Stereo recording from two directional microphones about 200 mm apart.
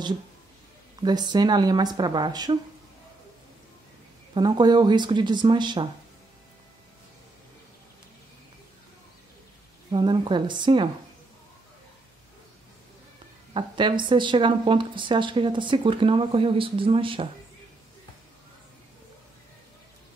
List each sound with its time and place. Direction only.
1.0 s speech: 20° right (ahead or behind)
4.3 s speech: 20° right (ahead or behind)
9.8 s speech: 20° right (ahead or behind)
13.5 s speech: 25° right (ahead or behind)